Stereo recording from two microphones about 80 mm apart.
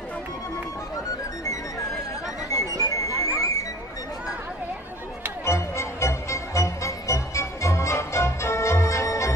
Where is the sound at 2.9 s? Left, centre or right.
Left.